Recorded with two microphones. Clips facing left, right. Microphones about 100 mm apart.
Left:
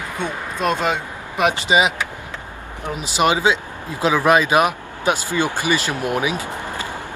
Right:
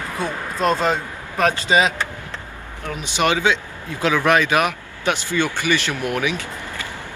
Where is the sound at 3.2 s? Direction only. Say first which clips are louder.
Left 2 dB; 15° left (ahead or behind).